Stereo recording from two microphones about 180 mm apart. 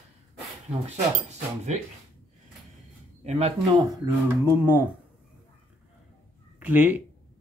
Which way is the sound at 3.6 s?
25° right (ahead or behind).